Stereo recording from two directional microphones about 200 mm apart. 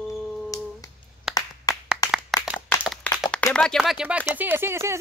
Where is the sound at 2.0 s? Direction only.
20° left (ahead or behind).